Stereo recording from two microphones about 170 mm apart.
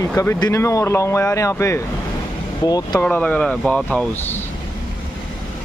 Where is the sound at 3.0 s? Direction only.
10° left (ahead or behind).